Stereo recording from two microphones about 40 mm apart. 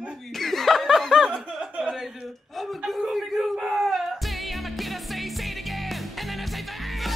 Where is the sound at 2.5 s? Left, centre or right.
Centre.